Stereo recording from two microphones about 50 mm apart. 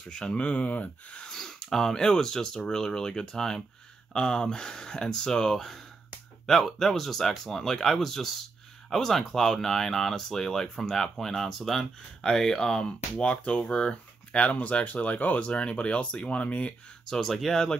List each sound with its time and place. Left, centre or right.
0.1 s speech: left
1.2 s speech: centre; by 16.7 s left
17.0 s speech: centre